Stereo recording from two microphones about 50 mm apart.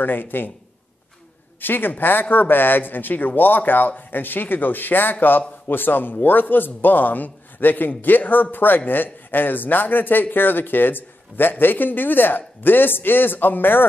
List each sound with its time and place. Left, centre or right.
0.0 s a man's voice: left
1.6 s a man's voice: left